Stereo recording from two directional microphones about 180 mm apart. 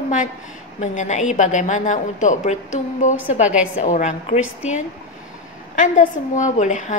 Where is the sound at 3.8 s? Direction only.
40° left (ahead or behind).